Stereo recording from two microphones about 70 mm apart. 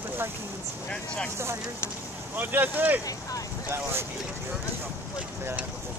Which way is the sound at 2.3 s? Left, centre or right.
Right.